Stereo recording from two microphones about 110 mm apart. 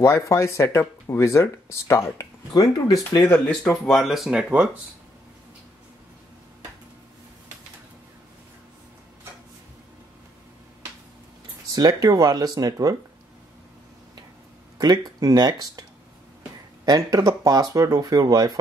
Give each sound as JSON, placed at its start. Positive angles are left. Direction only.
{"t": 0.0, "sound": "speech", "side_deg": 25}
{"t": 2.5, "sound": "speech", "side_deg": 40}
{"t": 3.0, "sound": "speech", "side_deg": 25}
{"t": 3.3, "sound": "speech", "side_deg": 10}
{"t": 11.7, "sound": "speech", "side_deg": -35}
{"t": 14.8, "sound": "speech", "side_deg": -40}
{"t": 16.8, "sound": "speech", "side_deg": -35}